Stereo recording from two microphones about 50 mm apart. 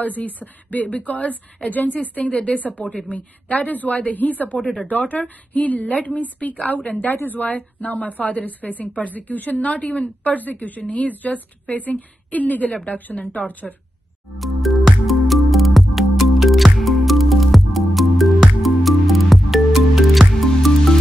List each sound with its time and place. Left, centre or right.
0.0 s a woman's voice: left
14.4 s music: centre